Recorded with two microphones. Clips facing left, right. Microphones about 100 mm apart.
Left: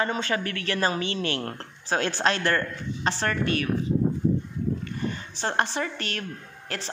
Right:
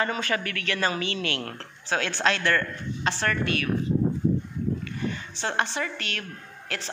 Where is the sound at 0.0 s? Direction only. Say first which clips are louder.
Left 1 dB; 25° left (ahead or behind).